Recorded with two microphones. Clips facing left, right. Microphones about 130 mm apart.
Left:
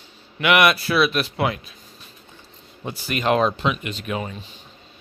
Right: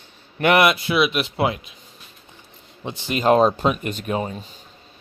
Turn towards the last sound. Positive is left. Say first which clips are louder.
# right 3 dB
turn(degrees=-35)  # may be behind; listen again after turning